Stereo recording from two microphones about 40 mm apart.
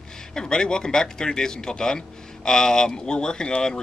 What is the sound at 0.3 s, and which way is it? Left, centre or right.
Speech, centre.